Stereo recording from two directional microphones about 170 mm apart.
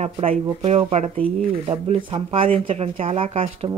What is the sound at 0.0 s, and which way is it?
Speech, 35° right (ahead or behind).